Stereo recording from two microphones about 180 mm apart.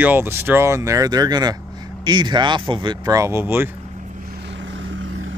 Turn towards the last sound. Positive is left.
turn(degrees=-10)  # may be behind; listen again after turning